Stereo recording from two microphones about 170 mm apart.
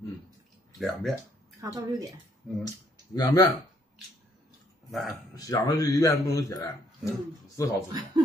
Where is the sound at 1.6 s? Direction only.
20° right (ahead or behind).